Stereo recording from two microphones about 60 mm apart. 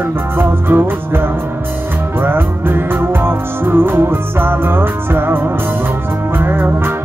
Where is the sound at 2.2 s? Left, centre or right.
Right.